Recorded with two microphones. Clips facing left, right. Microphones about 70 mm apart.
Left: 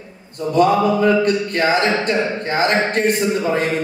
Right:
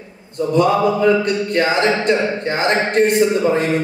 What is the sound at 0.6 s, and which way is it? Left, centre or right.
Mantra, left.